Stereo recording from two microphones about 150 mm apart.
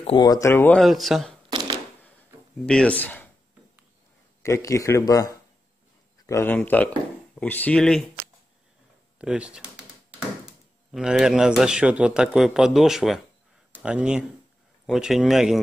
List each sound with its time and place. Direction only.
0.0 s speech: 35° left (ahead or behind)
0.3 s speech: 20° left (ahead or behind)
0.7 s speech: centre (ahead or behind)
2.6 s speech: 5° left (ahead or behind)
4.4 s speech: 20° left (ahead or behind); by 8.1 s 5° left (ahead or behind)
9.2 s speech: 5° right (ahead or behind)